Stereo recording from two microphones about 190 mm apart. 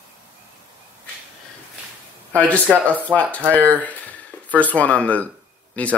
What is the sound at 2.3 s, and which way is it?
Speech, 10° left (ahead or behind).